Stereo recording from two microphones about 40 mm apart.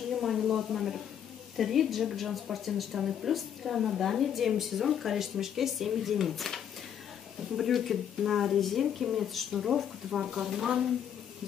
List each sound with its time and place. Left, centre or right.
0.2 s a sound: centre
1.6 s a woman's voice: centre
8.8 s speech: centre
9.3 s a woman's voice: centre
10.1 s speech: centre